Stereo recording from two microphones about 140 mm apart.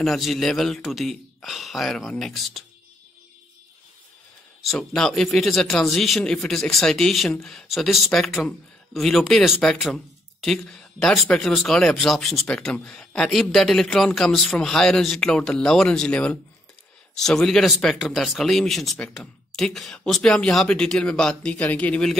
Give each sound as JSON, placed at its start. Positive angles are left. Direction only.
{"t": 0.0, "sound": "speech", "side_deg": 0}
{"t": 4.6, "sound": "speech", "side_deg": 5}